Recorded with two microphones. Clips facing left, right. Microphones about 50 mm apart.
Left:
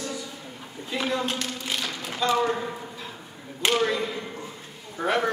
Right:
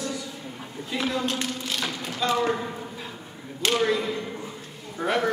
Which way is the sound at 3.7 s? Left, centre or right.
Centre.